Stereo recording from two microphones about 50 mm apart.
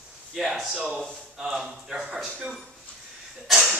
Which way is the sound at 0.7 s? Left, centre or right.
Centre.